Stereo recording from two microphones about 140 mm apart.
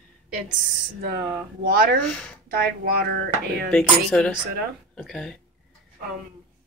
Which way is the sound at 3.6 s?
10° left (ahead or behind).